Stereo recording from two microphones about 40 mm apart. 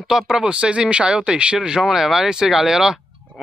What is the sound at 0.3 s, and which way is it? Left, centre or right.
Speech, right.